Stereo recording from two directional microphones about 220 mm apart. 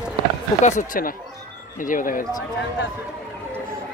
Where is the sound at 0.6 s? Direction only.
35° left (ahead or behind).